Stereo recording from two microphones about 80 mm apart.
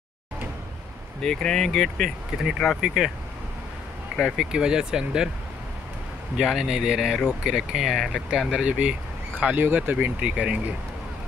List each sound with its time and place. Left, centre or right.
1.2 s speech: centre
4.4 s speech: centre
6.3 s speech: centre; by 9.9 s right
9.9 s speech: centre